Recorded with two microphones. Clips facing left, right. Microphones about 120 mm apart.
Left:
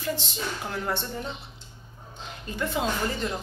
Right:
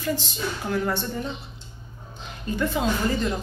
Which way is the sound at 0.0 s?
25° left (ahead or behind).